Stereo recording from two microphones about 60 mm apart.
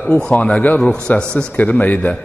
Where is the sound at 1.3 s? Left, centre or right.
Centre.